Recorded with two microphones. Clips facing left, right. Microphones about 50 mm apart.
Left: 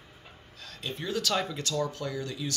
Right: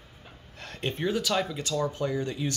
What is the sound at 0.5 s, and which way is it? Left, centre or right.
Speech, right.